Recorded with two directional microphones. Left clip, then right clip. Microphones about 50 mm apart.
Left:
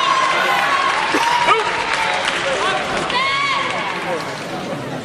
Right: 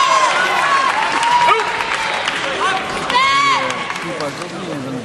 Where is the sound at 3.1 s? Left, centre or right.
Right.